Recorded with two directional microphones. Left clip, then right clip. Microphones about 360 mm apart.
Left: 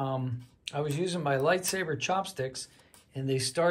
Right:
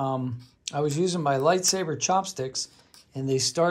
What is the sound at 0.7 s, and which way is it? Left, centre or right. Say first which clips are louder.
Speech: right 6 dB; centre.